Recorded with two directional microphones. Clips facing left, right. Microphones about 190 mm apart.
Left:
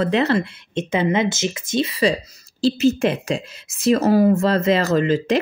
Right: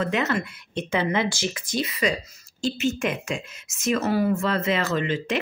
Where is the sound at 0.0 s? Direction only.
35° left (ahead or behind).